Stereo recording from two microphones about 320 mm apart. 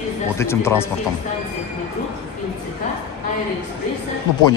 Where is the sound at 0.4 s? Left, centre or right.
Centre.